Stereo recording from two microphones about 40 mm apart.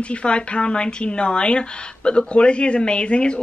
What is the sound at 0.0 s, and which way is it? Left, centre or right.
A woman's voice, left.